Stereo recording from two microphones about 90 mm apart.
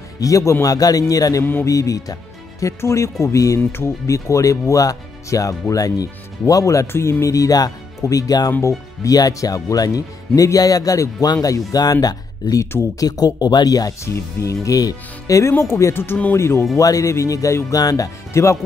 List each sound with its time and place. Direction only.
0.2 s speech: 35° left (ahead or behind)
1.4 s speech: 25° left (ahead or behind)
1.7 s speech: 40° left (ahead or behind)
14.0 s speech: 30° left (ahead or behind)